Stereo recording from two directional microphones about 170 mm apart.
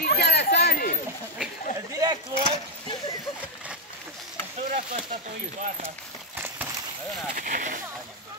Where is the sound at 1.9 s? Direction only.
20° right (ahead or behind).